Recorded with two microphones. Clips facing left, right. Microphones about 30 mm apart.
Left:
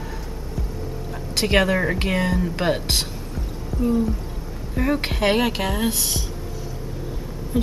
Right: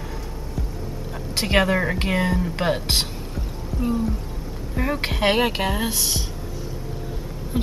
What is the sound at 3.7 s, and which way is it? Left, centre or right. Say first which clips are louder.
Music: left 3 dB; right.